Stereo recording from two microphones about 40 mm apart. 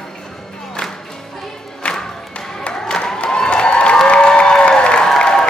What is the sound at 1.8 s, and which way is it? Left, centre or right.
Music, left.